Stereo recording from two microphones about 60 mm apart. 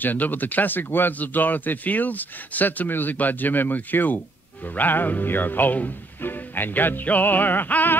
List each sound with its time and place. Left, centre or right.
0.0 s speech: left